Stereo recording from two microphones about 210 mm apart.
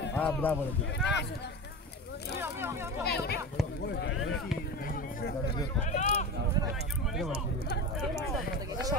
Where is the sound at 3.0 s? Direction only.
50° left (ahead or behind).